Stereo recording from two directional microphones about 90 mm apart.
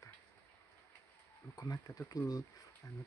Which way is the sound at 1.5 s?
45° left (ahead or behind).